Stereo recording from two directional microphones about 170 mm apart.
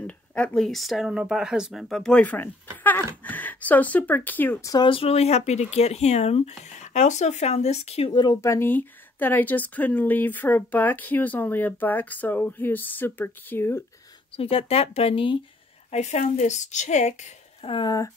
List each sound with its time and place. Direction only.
0.0 s speech: 5° left (ahead or behind)
4.8 s speech: 35° left (ahead or behind); by 13.8 s 15° left (ahead or behind)
14.3 s speech: 35° left (ahead or behind)